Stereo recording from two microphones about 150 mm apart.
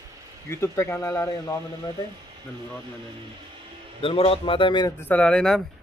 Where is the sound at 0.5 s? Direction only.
20° left (ahead or behind).